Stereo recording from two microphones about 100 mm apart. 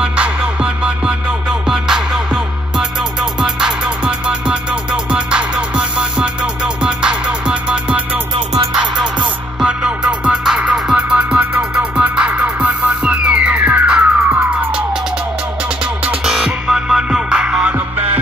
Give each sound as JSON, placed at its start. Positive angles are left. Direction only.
{"t": 0.0, "sound": "music", "side_deg": -10}
{"t": 3.3, "sound": "music", "side_deg": -5}
{"t": 14.0, "sound": "police car", "side_deg": -20}
{"t": 16.1, "sound": "music", "side_deg": -10}